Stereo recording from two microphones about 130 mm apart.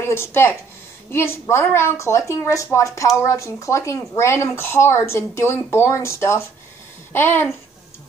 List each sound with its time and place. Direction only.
0.0 s a woman's voice: 20° left (ahead or behind)